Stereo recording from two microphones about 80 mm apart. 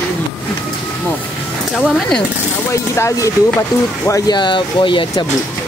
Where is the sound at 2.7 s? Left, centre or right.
Left.